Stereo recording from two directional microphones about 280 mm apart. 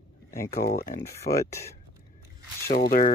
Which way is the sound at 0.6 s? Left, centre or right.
Left.